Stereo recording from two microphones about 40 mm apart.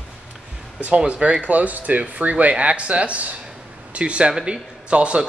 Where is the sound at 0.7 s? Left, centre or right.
Right.